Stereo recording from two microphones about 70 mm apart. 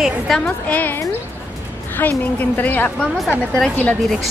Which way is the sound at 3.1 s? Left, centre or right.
Centre.